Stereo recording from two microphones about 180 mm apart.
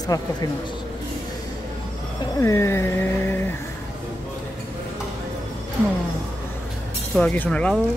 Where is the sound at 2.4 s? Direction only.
15° left (ahead or behind).